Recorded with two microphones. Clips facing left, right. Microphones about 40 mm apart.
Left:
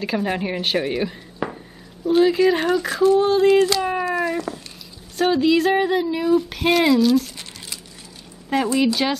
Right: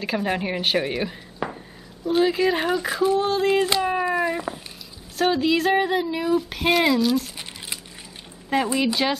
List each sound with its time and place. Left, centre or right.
0.0 s a woman's voice: centre
3.4 s a sound: centre
5.1 s speech: centre
8.7 s speech: centre